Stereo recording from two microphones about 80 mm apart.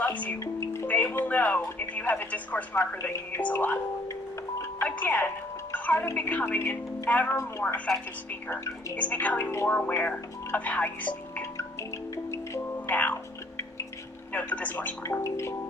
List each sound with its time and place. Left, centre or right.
0.0 s speech: centre
0.4 s music: left
0.8 s a woman's voice: left
4.8 s a woman's voice: left
9.4 s a woman's voice: left
9.7 s speech: centre
12.3 s music: left
14.3 s speech: centre
15.0 s a woman's voice: left